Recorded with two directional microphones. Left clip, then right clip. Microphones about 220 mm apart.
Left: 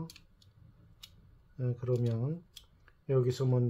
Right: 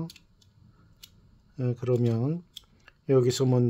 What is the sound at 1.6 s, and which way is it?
Speech, 50° right (ahead or behind).